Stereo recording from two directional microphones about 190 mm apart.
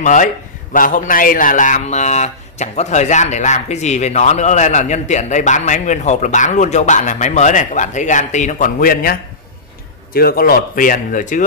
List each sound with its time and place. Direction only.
0.0 s speech: 40° left (ahead or behind)